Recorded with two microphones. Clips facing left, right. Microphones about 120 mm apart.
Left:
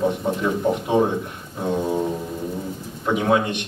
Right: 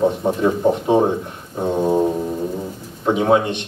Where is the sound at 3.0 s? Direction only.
25° right (ahead or behind).